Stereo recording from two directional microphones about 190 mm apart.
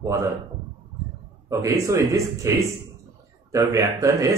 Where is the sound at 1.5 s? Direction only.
15° right (ahead or behind).